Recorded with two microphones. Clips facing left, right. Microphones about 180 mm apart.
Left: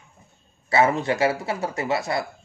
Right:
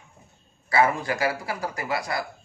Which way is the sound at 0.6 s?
25° left (ahead or behind).